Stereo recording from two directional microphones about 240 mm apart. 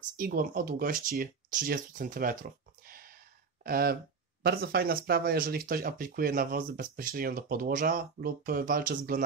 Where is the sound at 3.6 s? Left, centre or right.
Right.